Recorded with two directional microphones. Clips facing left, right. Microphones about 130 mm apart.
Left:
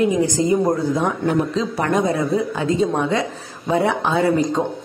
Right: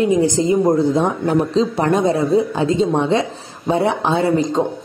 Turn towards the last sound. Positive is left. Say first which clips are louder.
# right 1 dB
turn(degrees=-25)  # may be behind; listen again after turning